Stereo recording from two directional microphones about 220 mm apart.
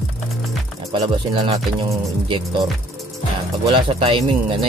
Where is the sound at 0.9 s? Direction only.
20° right (ahead or behind).